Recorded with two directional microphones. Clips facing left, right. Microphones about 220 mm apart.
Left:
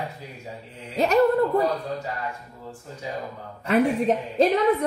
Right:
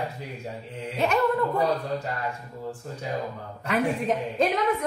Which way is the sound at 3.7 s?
40° left (ahead or behind).